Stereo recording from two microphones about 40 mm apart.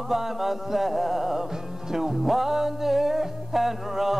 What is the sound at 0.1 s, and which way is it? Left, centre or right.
Music, centre.